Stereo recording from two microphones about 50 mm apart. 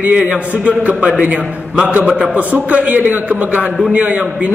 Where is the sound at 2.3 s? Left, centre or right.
Right.